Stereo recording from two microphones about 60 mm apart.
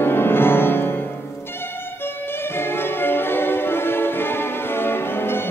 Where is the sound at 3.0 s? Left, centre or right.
Left.